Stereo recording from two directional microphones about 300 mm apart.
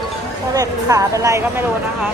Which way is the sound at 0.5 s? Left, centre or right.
Centre.